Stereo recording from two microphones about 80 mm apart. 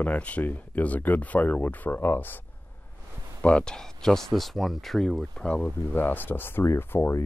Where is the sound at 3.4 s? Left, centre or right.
Centre.